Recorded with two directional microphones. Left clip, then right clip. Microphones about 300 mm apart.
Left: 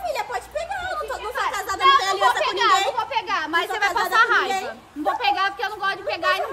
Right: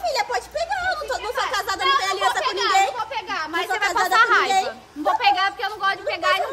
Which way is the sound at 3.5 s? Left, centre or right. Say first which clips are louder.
Right 1 dB; centre.